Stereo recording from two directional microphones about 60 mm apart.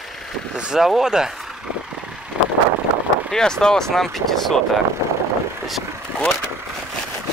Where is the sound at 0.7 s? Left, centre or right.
Centre.